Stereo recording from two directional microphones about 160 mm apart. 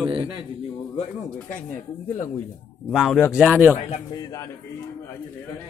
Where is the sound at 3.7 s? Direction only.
45° left (ahead or behind).